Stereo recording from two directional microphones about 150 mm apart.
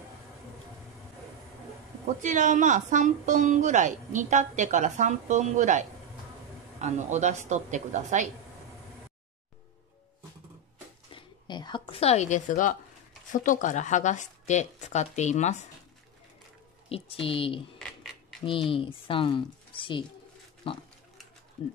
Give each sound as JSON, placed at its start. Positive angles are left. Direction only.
{"t": 2.2, "sound": "a woman's voice", "side_deg": -55}
{"t": 11.1, "sound": "a sound", "side_deg": 30}
{"t": 13.3, "sound": "speech", "side_deg": 60}
{"t": 16.9, "sound": "speech", "side_deg": 40}